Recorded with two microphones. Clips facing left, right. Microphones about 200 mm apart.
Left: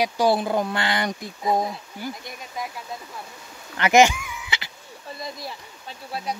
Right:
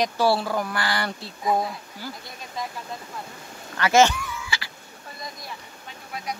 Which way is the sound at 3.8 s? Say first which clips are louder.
Left 2 dB; 15° left (ahead or behind).